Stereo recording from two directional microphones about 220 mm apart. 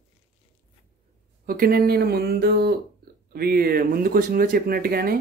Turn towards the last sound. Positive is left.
turn(degrees=-45)  # may be behind; listen again after turning